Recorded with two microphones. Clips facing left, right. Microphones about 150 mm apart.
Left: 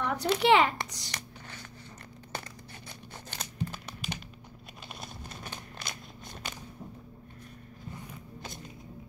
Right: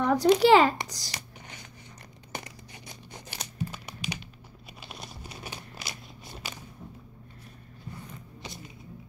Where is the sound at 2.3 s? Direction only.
15° right (ahead or behind).